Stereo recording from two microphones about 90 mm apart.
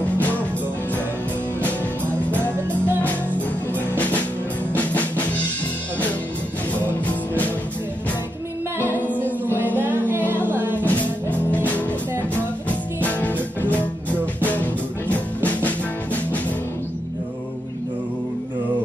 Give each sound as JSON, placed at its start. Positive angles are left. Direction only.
{"t": 0.0, "sound": "music", "side_deg": 15}
{"t": 3.0, "sound": "music", "side_deg": 15}
{"t": 4.7, "sound": "music", "side_deg": 15}
{"t": 8.8, "sound": "music", "side_deg": 20}
{"t": 10.0, "sound": "music", "side_deg": -25}
{"t": 10.9, "sound": "music", "side_deg": 15}